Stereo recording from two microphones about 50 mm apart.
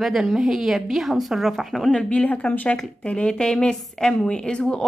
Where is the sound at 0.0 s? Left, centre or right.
Centre.